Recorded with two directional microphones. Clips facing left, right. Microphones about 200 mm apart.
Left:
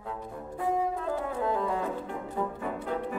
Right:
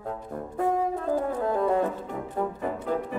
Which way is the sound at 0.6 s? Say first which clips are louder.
Right 3 dB; 45° right (ahead or behind).